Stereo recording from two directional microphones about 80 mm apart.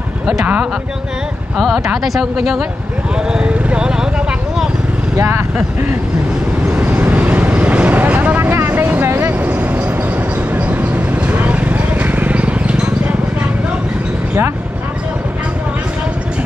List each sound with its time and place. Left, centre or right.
1.6 s speech: centre
3.3 s speech: centre
5.1 s speech: right
6.7 s vehicle: right